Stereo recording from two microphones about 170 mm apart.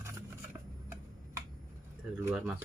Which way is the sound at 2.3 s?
10° right (ahead or behind).